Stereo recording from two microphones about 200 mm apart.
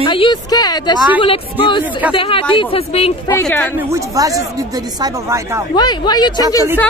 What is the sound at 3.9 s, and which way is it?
Speech, 15° right (ahead or behind).